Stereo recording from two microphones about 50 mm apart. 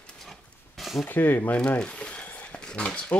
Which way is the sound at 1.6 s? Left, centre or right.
Left.